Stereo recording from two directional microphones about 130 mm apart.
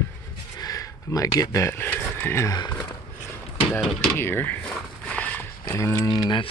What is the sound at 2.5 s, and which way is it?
Speech, 30° left (ahead or behind).